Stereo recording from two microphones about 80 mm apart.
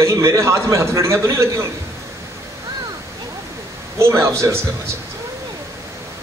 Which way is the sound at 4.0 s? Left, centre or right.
Right.